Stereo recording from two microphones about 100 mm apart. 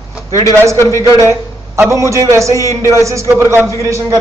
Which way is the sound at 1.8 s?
30° right (ahead or behind).